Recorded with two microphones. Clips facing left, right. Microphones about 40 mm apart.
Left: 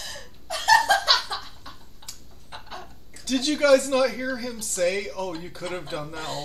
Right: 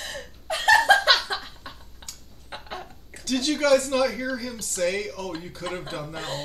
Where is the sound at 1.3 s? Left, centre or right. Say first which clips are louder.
Right 2 dB; right.